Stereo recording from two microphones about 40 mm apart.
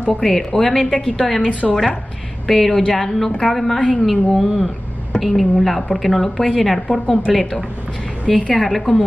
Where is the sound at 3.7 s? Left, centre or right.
Left.